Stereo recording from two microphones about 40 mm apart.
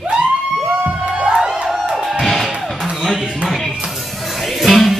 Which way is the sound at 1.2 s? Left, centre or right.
Centre.